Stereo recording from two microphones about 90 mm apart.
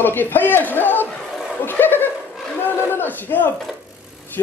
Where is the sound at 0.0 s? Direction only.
25° left (ahead or behind).